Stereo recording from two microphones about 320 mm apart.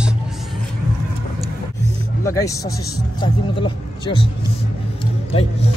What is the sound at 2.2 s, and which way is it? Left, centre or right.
Speech, centre.